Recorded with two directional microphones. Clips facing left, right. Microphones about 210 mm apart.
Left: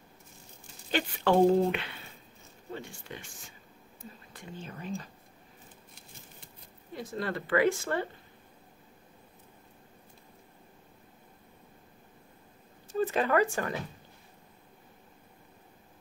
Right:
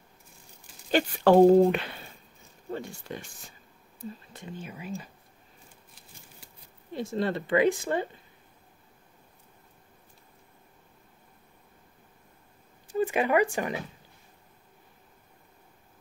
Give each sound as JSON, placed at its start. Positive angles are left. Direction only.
{"t": 0.9, "sound": "speech", "side_deg": -40}
{"t": 4.0, "sound": "speech", "side_deg": -25}
{"t": 4.6, "sound": "speech", "side_deg": -10}
{"t": 7.0, "sound": "speech", "side_deg": -25}
{"t": 12.8, "sound": "speech", "side_deg": -15}